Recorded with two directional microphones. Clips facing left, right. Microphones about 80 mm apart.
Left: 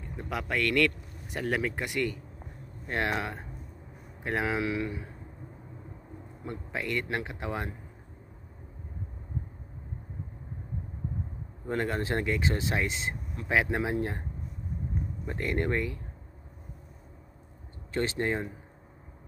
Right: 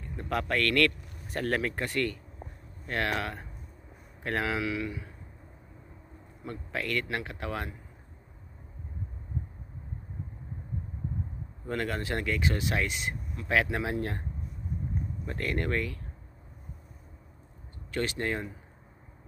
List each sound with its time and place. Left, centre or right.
0.1 s speech: centre; by 5.1 s left
6.4 s speech: centre
11.6 s speech: left
15.2 s speech: left
17.9 s speech: left